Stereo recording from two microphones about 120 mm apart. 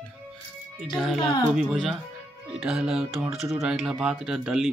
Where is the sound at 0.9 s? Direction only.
Centre (ahead or behind).